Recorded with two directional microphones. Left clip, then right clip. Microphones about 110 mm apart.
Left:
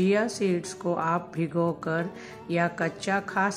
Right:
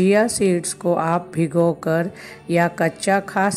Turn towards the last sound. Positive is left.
turn(degrees=-45)  # may be behind; listen again after turning